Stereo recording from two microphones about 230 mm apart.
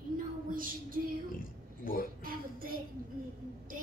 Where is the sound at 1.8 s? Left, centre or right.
Left.